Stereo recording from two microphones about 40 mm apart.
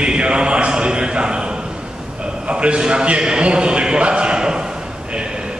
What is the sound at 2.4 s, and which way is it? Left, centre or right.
A man's voice, right.